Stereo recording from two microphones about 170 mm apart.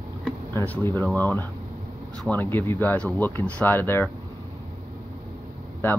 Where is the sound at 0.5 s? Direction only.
10° left (ahead or behind).